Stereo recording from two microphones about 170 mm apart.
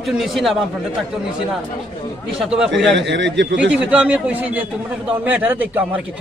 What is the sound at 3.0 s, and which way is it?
Speech, 90° right.